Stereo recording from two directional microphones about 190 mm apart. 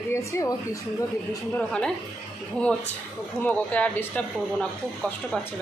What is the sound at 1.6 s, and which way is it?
A woman's voice, 5° left (ahead or behind).